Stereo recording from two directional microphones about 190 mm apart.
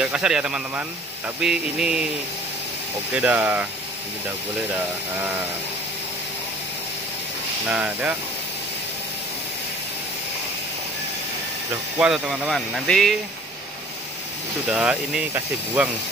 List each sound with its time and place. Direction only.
0.0 s speech: 5° right (ahead or behind)
3.1 s speech: 10° right (ahead or behind)
7.7 s speech: 5° right (ahead or behind)
12.0 s speech: centre (ahead or behind)
14.7 s speech: 5° right (ahead or behind)